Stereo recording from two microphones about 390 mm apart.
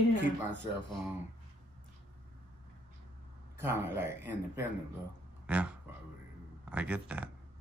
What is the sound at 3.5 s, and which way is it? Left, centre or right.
Speech, centre.